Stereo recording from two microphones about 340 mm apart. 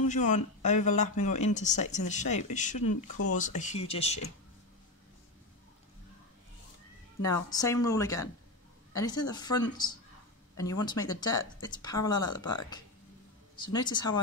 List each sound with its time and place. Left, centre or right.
0.1 s speech: left
2.9 s speech: left
3.3 s speech: left
7.4 s speech: centre